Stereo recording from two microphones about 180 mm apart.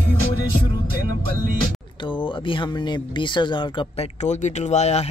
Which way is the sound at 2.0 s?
25° left (ahead or behind).